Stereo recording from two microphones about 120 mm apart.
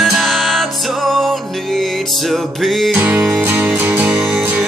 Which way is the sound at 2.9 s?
15° right (ahead or behind).